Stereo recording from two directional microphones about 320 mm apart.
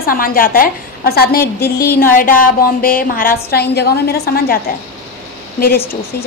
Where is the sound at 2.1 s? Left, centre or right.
Left.